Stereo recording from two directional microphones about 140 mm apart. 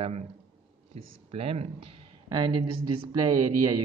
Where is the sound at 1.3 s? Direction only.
45° right (ahead or behind).